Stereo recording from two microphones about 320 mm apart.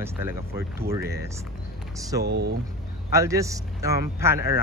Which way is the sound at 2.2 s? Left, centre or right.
Right.